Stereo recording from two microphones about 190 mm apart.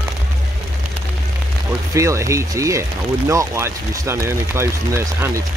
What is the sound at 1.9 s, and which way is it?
Speech, 15° right (ahead or behind).